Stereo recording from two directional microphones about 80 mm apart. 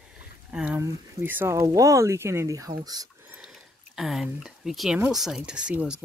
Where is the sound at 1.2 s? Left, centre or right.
Right.